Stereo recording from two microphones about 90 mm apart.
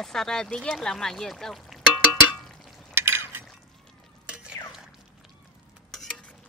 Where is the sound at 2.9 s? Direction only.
25° right (ahead or behind).